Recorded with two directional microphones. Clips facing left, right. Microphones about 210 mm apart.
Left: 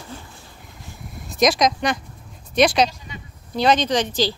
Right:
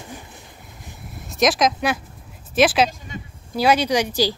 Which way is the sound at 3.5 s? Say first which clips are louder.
Even; 10° right (ahead or behind).